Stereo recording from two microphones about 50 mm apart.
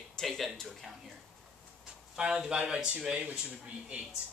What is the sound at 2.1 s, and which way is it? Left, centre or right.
Speech, centre.